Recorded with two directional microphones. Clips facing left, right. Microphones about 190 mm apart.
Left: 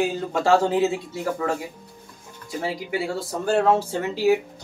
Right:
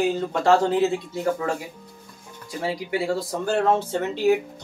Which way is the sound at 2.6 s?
Centre (ahead or behind).